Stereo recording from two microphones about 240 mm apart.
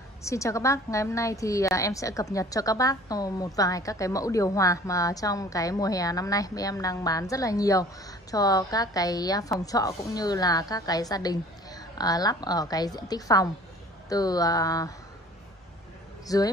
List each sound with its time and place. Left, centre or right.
0.2 s a woman's voice: centre
16.3 s a woman's voice: centre